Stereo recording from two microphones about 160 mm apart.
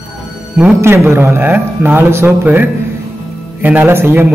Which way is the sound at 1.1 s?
15° right (ahead or behind).